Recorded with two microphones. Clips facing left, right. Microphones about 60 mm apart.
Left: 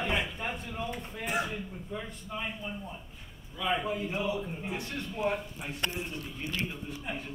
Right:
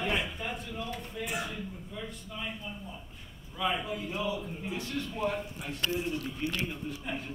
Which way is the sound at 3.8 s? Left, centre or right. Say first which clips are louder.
Left 2 dB; left.